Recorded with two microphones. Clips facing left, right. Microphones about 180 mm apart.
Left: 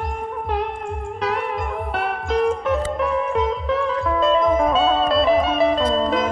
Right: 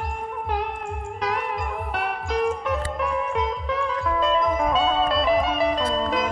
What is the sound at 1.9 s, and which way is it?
Music, 30° left (ahead or behind).